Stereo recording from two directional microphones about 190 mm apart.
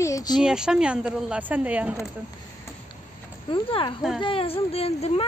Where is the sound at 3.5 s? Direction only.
25° left (ahead or behind).